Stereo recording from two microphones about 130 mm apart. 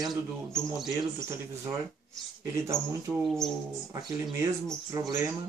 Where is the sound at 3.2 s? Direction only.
5° left (ahead or behind).